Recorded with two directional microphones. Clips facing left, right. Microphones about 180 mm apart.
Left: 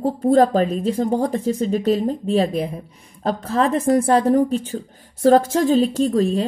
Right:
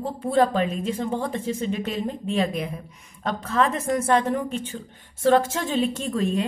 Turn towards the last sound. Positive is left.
turn(degrees=35)  # may be behind; listen again after turning